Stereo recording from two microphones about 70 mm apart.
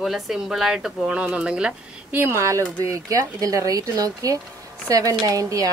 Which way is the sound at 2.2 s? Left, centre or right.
Right.